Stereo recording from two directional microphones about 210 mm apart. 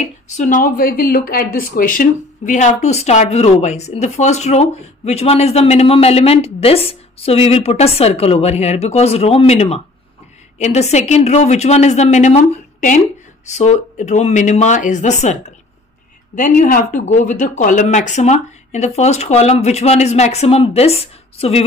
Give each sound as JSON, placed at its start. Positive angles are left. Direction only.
{"t": 0.4, "sound": "speech", "side_deg": 40}
{"t": 16.3, "sound": "speech", "side_deg": 40}